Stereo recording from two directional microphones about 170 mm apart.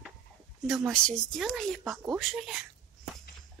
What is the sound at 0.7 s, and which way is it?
Speech, centre (ahead or behind).